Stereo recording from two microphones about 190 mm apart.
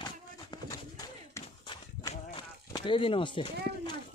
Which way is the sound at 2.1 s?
25° left (ahead or behind).